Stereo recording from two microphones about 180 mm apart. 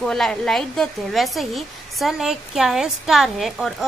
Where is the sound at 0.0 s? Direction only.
5° left (ahead or behind).